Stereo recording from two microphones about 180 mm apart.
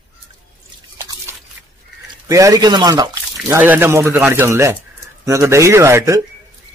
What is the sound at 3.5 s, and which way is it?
A man's voice, 10° right (ahead or behind).